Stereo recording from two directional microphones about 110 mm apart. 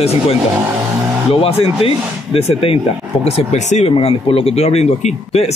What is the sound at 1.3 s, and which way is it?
A man's voice, 60° left (ahead or behind).